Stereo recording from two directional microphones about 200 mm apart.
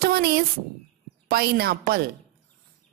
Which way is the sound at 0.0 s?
50° right (ahead or behind).